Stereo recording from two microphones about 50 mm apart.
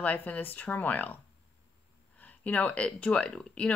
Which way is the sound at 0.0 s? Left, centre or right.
Left.